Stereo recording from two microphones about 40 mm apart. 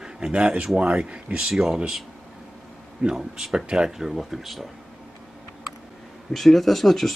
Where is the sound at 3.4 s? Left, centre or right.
Centre.